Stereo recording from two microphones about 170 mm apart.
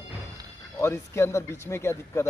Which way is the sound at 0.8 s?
15° left (ahead or behind).